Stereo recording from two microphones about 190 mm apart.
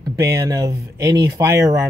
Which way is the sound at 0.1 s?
15° right (ahead or behind).